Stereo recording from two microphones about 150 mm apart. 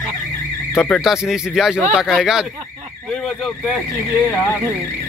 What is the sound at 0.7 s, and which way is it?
Speech, centre (ahead or behind).